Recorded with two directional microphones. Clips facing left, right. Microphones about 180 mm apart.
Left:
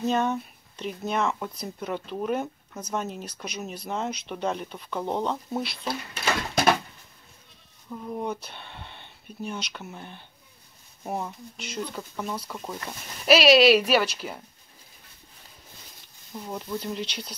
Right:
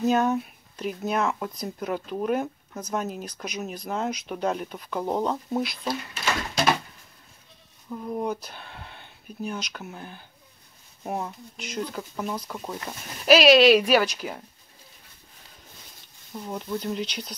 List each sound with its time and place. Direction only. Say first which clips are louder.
0.0 s speech: right 3 dB; 5° right (ahead or behind)
7.9 s speech: right 2 dB; 5° right (ahead or behind)
16.3 s speech: right 2 dB; centre (ahead or behind)